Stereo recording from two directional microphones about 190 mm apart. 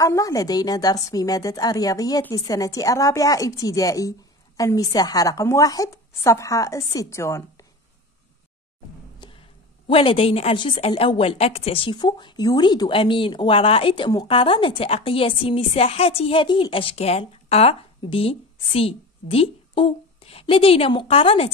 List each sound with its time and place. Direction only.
0.0 s a woman's voice: 15° left (ahead or behind)
9.2 s a sound: 25° left (ahead or behind)
9.8 s a woman's voice: 30° left (ahead or behind)